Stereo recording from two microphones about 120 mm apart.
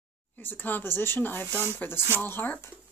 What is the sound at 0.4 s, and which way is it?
Speech, 15° left (ahead or behind).